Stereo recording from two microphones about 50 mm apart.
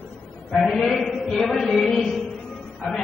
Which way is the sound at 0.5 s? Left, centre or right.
Centre.